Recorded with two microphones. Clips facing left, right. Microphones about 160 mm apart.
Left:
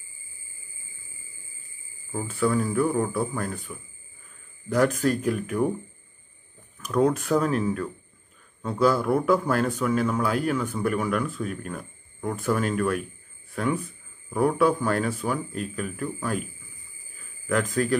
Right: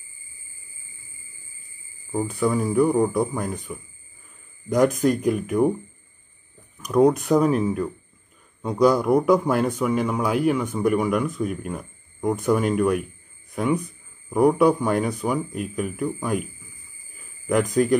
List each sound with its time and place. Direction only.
2.4 s speech: 20° right (ahead or behind)
4.6 s speech: 15° right (ahead or behind)
6.8 s speech: 15° right (ahead or behind)
17.5 s speech: 15° right (ahead or behind)